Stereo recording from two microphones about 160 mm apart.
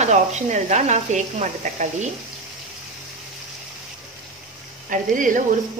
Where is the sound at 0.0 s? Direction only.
45° right (ahead or behind).